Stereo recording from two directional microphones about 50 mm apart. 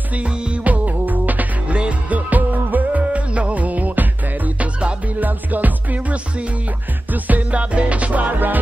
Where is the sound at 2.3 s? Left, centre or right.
Right.